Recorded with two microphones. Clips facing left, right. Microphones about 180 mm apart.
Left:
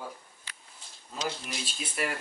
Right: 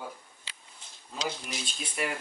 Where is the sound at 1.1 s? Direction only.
5° left (ahead or behind).